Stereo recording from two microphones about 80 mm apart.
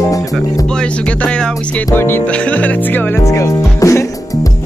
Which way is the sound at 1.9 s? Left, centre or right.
Left.